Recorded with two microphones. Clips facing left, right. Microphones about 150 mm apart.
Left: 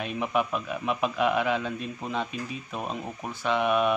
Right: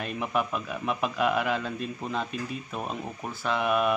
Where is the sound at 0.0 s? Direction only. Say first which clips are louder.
Left 2 dB; 5° left (ahead or behind).